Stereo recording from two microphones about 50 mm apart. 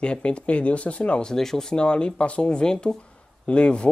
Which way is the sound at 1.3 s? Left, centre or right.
Centre.